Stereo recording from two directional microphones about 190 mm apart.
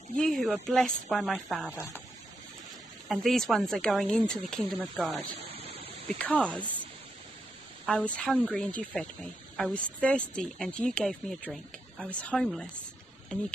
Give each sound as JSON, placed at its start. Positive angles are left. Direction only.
{"t": 0.1, "sound": "a woman's voice", "side_deg": 0}
{"t": 3.1, "sound": "a woman's voice", "side_deg": 0}
{"t": 5.4, "sound": "a sound", "side_deg": -30}
{"t": 6.1, "sound": "speech", "side_deg": 5}
{"t": 7.8, "sound": "a woman's voice", "side_deg": 5}